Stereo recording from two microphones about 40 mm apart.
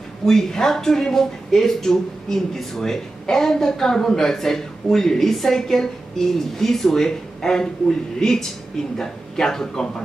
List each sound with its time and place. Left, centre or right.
0.3 s speech: centre